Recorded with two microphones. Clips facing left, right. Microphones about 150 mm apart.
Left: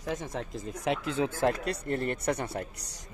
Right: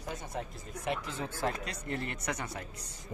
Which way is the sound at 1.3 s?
45° left (ahead or behind).